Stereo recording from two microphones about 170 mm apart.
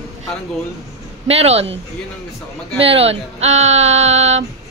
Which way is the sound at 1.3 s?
35° right (ahead or behind).